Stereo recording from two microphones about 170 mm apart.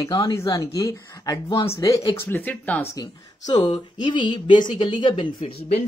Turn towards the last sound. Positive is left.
turn(degrees=35)  # may be behind; listen again after turning